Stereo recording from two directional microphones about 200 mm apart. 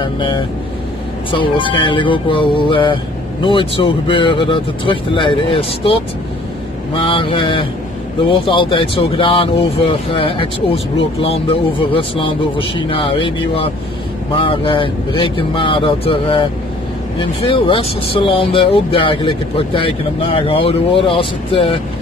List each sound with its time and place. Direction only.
0.0 s speech: 25° left (ahead or behind)
7.0 s speech: 25° left (ahead or behind)